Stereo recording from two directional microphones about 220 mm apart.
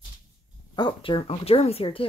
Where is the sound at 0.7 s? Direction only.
20° left (ahead or behind).